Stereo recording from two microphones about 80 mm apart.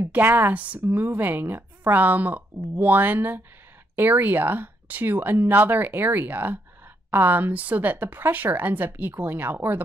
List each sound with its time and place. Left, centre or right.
0.1 s speech: right